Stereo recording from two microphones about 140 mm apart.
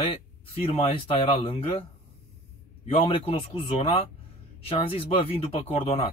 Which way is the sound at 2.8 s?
45° left (ahead or behind).